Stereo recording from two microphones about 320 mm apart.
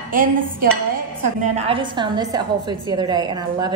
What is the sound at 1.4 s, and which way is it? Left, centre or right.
A woman's voice, centre.